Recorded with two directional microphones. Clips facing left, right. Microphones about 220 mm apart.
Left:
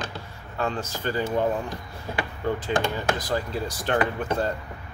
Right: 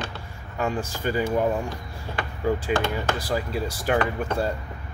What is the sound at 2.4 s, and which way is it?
Speech, 10° right (ahead or behind).